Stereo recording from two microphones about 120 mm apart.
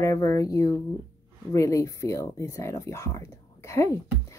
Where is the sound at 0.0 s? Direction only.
25° left (ahead or behind).